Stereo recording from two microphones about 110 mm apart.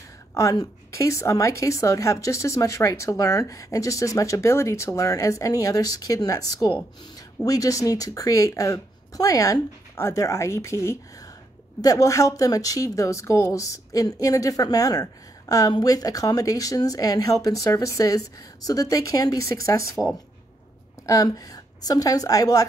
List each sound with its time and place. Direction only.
0.3 s a woman's voice: 30° left (ahead or behind)